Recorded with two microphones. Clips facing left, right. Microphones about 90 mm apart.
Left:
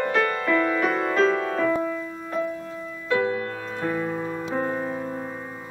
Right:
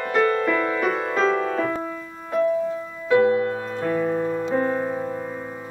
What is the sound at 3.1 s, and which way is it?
Music, 30° right (ahead or behind).